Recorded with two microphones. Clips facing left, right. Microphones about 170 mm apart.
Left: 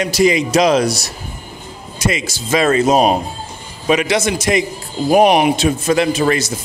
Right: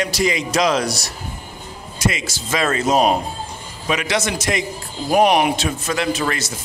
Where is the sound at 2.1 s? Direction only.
20° left (ahead or behind).